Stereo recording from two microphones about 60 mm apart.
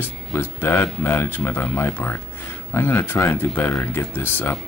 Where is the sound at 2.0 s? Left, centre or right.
Left.